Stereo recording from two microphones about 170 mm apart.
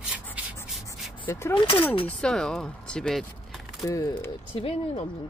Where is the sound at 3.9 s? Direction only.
20° left (ahead or behind).